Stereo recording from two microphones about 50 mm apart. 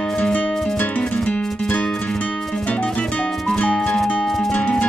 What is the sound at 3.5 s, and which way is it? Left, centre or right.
Music, left.